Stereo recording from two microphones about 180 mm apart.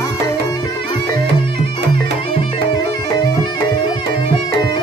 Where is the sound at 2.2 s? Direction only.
25° left (ahead or behind).